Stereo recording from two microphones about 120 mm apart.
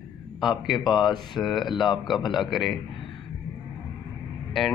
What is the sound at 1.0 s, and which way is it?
Speech, 35° left (ahead or behind).